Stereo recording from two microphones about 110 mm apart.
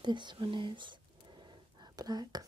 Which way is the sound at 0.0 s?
45° right (ahead or behind).